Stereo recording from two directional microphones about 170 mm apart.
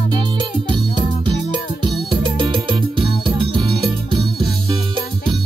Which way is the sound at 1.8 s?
30° right (ahead or behind).